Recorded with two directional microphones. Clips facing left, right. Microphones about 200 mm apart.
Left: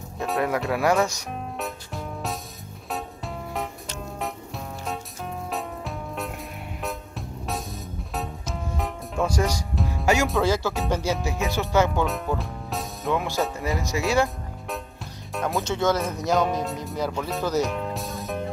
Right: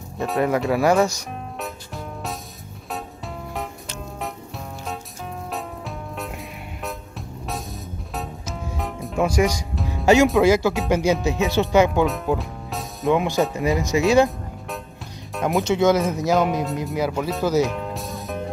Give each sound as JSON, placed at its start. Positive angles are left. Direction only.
{"t": 0.2, "sound": "music", "side_deg": 0}
{"t": 5.5, "sound": "music", "side_deg": 0}
{"t": 9.2, "sound": "speech", "side_deg": -10}
{"t": 9.5, "sound": "music", "side_deg": 0}
{"t": 10.0, "sound": "speech", "side_deg": -20}
{"t": 12.4, "sound": "music", "side_deg": 0}
{"t": 13.1, "sound": "speech", "side_deg": -15}
{"t": 15.4, "sound": "speech", "side_deg": -15}
{"t": 16.9, "sound": "music", "side_deg": -10}